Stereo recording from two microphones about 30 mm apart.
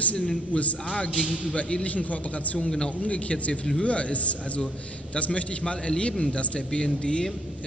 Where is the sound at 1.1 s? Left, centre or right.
Right.